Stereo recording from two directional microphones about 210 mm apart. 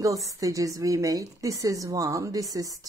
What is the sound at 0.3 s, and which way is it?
A woman's voice, 15° right (ahead or behind).